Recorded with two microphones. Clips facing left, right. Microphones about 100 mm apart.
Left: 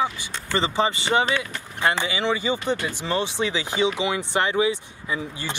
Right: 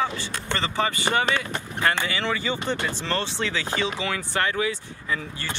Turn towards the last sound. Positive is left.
turn(degrees=15)  # may be behind; listen again after turning